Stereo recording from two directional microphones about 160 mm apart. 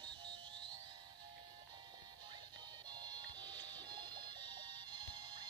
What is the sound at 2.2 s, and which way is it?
Music, 25° right (ahead or behind).